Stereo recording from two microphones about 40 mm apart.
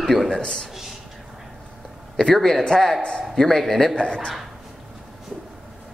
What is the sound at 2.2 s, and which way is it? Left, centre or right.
A man's voice, centre.